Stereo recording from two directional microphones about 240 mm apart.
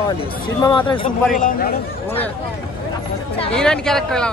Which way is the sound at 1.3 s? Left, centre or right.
Left.